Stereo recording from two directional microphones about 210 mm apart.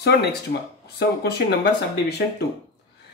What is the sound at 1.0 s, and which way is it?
Speech, 50° left (ahead or behind).